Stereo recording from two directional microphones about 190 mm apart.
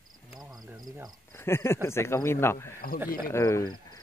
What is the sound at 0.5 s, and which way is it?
Speech, 20° right (ahead or behind).